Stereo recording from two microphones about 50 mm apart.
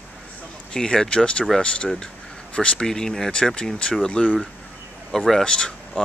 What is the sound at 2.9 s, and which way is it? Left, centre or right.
Speech, centre.